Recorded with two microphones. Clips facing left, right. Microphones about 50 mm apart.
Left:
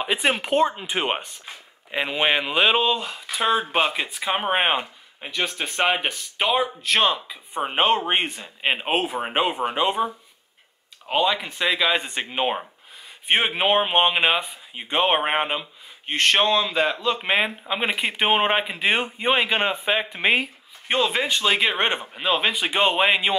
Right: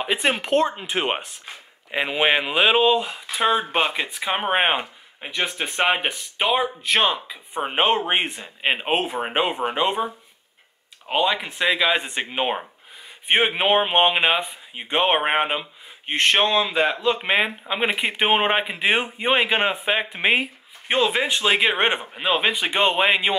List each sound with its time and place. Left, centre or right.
0.0 s speech: centre
11.1 s speech: centre